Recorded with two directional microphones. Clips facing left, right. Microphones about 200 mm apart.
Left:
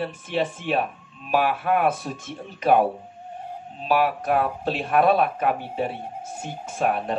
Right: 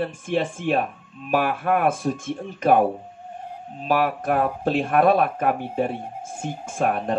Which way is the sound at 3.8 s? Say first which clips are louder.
Even; 50° right (ahead or behind).